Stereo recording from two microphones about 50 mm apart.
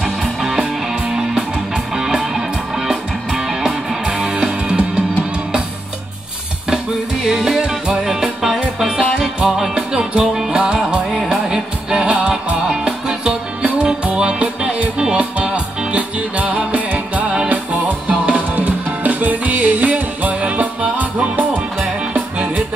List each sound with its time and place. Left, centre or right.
0.0 s music: centre
7.2 s music: centre; by 21.5 s right